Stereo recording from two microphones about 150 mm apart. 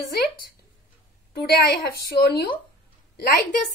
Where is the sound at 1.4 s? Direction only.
90° left.